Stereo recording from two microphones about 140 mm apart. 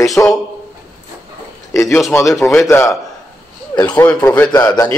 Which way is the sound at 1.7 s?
20° left (ahead or behind).